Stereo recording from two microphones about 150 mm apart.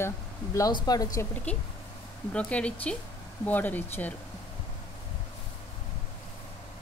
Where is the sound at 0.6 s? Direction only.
25° left (ahead or behind).